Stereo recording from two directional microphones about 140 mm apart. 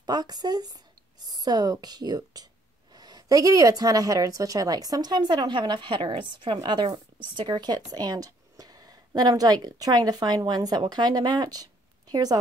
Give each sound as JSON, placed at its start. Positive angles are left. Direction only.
{"t": 0.0, "sound": "a woman's voice", "side_deg": -30}